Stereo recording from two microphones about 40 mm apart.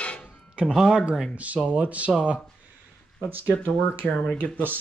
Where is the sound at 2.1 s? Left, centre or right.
Right.